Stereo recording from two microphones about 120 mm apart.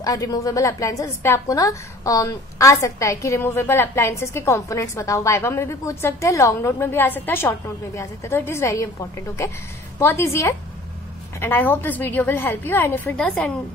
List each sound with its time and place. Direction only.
0.0 s a woman's voice: 30° left (ahead or behind)
9.9 s a woman's voice: 20° left (ahead or behind)